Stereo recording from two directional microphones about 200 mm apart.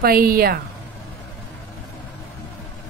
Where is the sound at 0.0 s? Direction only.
45° right (ahead or behind).